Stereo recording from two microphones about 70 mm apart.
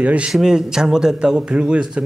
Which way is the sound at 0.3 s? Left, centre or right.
Centre.